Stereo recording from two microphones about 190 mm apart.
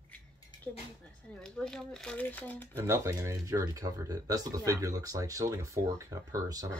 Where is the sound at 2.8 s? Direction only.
15° right (ahead or behind).